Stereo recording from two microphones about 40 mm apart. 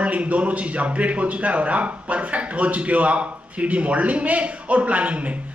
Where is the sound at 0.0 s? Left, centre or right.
Right.